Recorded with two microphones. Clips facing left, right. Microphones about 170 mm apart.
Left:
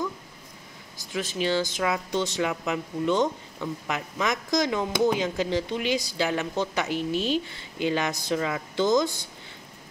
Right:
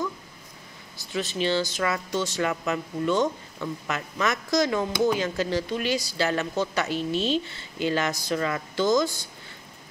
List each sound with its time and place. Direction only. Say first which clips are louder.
1.1 s speech: right 1 dB; 10° left (ahead or behind)
8.7 s speech: even; 20° left (ahead or behind)